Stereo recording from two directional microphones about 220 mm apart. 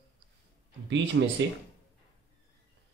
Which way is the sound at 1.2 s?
55° right (ahead or behind).